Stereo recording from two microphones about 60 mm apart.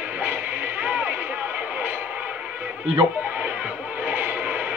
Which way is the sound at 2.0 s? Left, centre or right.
Right.